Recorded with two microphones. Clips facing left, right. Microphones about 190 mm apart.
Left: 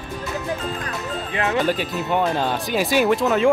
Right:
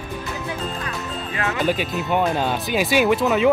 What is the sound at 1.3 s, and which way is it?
Speech, 25° left (ahead or behind).